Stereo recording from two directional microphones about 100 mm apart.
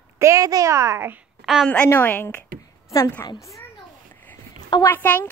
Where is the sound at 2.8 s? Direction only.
35° left (ahead or behind).